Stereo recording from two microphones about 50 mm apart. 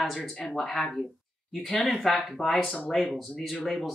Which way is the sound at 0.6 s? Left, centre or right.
Centre.